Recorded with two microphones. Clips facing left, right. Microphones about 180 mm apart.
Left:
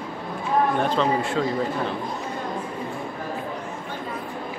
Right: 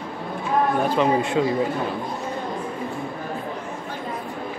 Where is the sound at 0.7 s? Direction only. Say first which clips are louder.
Right 2 dB; 10° right (ahead or behind).